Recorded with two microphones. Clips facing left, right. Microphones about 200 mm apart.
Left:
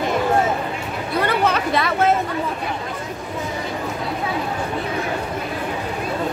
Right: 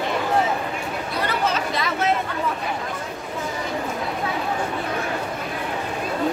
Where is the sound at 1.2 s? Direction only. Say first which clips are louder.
Left 4 dB; 60° left (ahead or behind).